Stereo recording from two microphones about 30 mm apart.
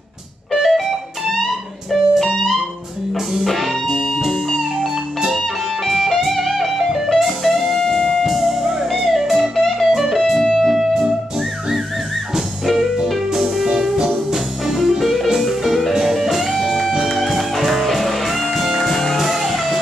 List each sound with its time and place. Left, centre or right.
0.5 s music: centre
1.9 s music: centre
5.9 s music: centre
7.9 s music: left
8.2 s music: centre
9.6 s music: centre
9.9 s music: centre
10.7 s music: centre
12.7 s music: centre
15.0 s music: centre
18.6 s music: centre
18.9 s music: centre